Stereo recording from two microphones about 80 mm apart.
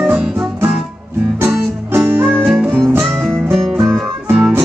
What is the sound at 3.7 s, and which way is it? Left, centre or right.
Music, right.